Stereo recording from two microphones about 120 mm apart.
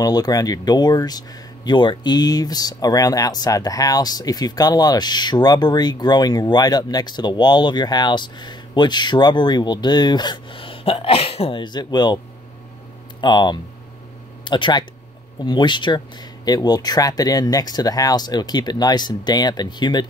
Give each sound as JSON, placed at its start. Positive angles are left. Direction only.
{"t": 0.0, "sound": "speech", "side_deg": 35}
{"t": 13.2, "sound": "speech", "side_deg": 40}